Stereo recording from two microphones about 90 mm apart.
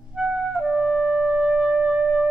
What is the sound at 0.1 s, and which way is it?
Music, 5° right (ahead or behind).